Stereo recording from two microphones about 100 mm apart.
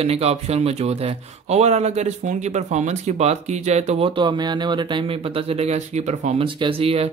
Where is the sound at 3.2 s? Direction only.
90° right.